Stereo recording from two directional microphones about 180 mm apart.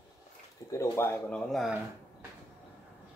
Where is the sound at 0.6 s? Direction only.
15° left (ahead or behind).